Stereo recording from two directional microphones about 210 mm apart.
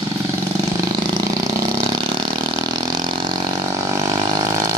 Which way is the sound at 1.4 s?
20° right (ahead or behind).